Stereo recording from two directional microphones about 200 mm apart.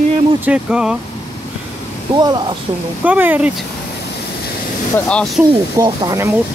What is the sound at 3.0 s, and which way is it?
Speech, 10° right (ahead or behind).